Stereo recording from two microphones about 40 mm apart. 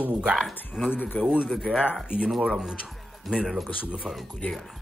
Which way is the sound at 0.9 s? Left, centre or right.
Left.